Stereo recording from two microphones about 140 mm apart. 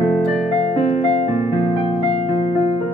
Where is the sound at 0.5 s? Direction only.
40° left (ahead or behind).